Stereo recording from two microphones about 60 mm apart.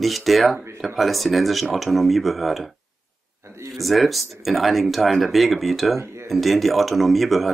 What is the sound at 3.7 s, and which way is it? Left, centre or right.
Speech, centre.